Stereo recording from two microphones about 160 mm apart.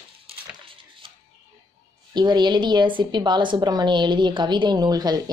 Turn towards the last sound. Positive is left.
turn(degrees=-25)  # may be behind; listen again after turning